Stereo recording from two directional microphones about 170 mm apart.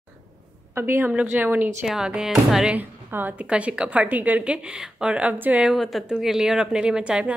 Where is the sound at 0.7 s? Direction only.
15° right (ahead or behind).